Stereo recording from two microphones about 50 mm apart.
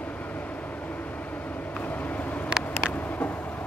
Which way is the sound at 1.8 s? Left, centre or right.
Left.